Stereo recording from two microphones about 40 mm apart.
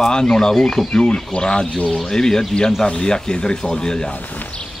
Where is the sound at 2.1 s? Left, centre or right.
Centre.